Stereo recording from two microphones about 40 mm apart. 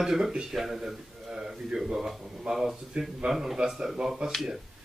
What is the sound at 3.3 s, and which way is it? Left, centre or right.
A man's voice, centre.